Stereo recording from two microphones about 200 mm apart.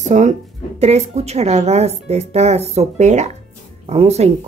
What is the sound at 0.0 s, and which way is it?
Speech, 35° right (ahead or behind).